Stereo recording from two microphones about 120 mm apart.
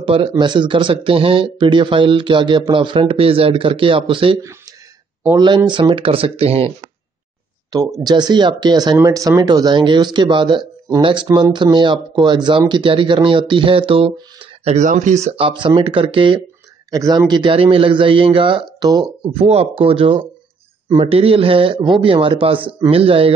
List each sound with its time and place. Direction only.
0.0 s speech: 50° right (ahead or behind)
4.4 s speech: 25° right (ahead or behind)
5.7 s speech: 45° right (ahead or behind)
8.0 s speech: 35° right (ahead or behind); by 15.4 s 70° right (ahead or behind)
15.4 s speech: 45° right (ahead or behind)
16.9 s speech: 30° right (ahead or behind); by 18.9 s 45° right (ahead or behind)
19.3 s speech: 55° right (ahead or behind)